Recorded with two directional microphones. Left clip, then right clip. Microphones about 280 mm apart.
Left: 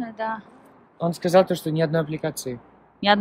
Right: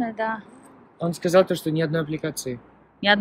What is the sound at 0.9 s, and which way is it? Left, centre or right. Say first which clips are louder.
Speech: left 1 dB; left.